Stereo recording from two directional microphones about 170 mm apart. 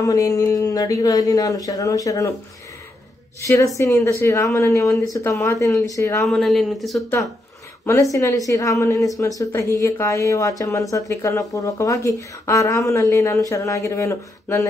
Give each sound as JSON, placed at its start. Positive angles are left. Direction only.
{"t": 0.0, "sound": "speech", "side_deg": 20}
{"t": 3.3, "sound": "speech", "side_deg": 20}
{"t": 6.2, "sound": "speech", "side_deg": 0}
{"t": 7.8, "sound": "speech", "side_deg": 15}